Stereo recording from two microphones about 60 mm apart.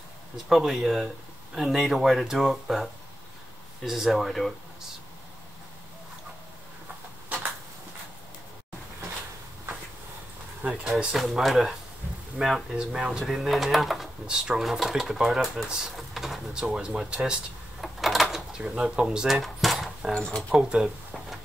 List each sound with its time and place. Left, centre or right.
0.5 s speech: centre
10.6 s speech: centre
11.1 s speech: centre
13.2 s speech: centre
14.2 s speech: centre
16.5 s speech: centre
17.1 s drawer open or close: centre
18.6 s speech: centre
19.2 s drawer open or close: centre
20.1 s speech: centre
20.5 s a sound: centre